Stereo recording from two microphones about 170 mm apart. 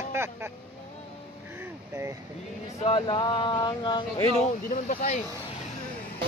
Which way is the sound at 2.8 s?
30° left (ahead or behind).